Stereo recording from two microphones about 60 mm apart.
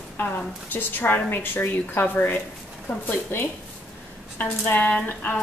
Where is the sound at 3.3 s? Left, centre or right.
Left.